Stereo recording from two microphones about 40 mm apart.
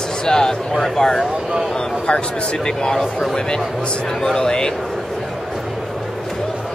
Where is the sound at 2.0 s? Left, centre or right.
Left.